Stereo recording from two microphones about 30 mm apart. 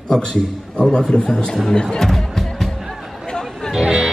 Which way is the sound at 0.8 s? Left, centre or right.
Centre.